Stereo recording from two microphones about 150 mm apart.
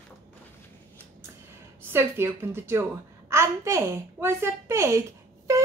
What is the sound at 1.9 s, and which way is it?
A woman's voice, 15° right (ahead or behind).